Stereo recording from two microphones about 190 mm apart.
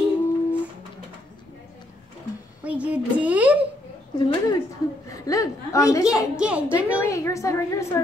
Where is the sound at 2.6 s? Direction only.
5° right (ahead or behind).